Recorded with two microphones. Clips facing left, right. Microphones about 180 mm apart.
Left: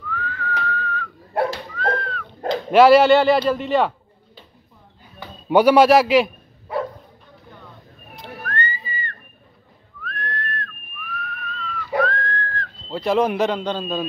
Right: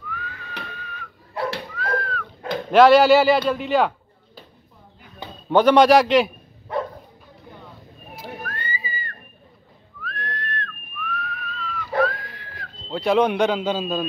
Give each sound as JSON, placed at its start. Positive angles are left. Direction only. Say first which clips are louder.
{"t": 0.1, "sound": "whistling", "louder": "left 9 dB", "side_deg": -15}
{"t": 1.3, "sound": "dog", "louder": "left 5 dB", "side_deg": 60}
{"t": 2.0, "sound": "dog", "louder": "right 1 dB", "side_deg": 0}
{"t": 2.7, "sound": "speech", "louder": "left 1 dB", "side_deg": 5}
{"t": 5.5, "sound": "a man's voice", "louder": "left 1 dB", "side_deg": 10}
{"t": 8.2, "sound": "whistling", "louder": "left 5 dB", "side_deg": -5}
{"t": 12.9, "sound": "speech", "louder": "even", "side_deg": 0}